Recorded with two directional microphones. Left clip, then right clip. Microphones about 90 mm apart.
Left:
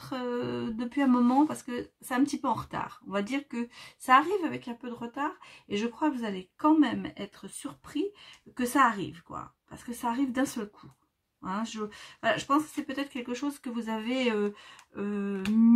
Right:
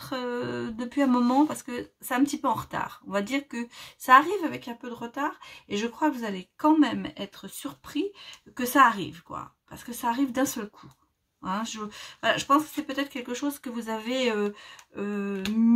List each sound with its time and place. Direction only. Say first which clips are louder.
0.0 s speech: right 2 dB; 15° right (ahead or behind)